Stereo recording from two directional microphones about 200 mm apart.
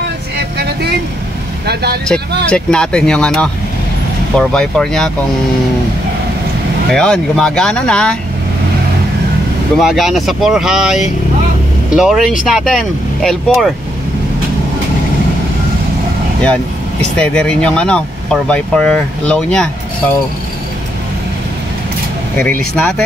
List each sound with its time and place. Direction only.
1.7 s speech: 55° right (ahead or behind)
2.0 s speech: 5° left (ahead or behind)
6.9 s speech: 5° left (ahead or behind)
9.8 s speech: centre (ahead or behind)
17.2 s speech: 5° left (ahead or behind)
22.4 s speech: 10° left (ahead or behind)